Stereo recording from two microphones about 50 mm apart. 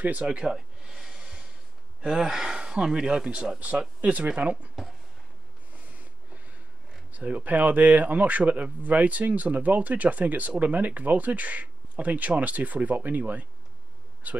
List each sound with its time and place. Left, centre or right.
0.0 s speech: right
0.5 s gasp: centre
2.0 s speech: centre
3.5 s a man's voice: right
7.1 s a man's voice: right